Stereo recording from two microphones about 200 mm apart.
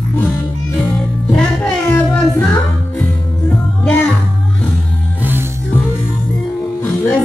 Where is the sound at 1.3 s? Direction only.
5° left (ahead or behind).